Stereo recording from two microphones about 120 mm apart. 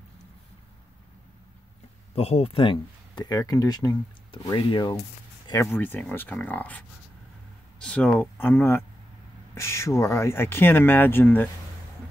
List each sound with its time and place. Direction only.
2.1 s speech: 55° left (ahead or behind)
3.3 s speech: 30° left (ahead or behind)
5.8 s speech: 10° left (ahead or behind)
7.8 s speech: 5° left (ahead or behind)